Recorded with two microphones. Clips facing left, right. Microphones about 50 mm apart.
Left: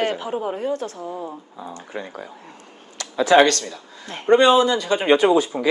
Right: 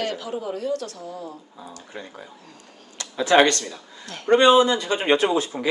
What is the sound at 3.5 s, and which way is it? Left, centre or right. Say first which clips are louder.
Speech: left 2 dB; centre.